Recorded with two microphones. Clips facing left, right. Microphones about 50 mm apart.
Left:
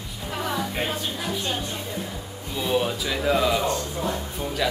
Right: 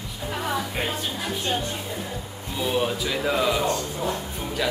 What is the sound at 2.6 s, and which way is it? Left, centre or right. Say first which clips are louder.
Speech: even; centre.